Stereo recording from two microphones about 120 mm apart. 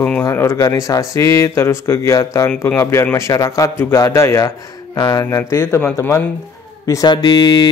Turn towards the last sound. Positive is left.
turn(degrees=35)  # may be behind; listen again after turning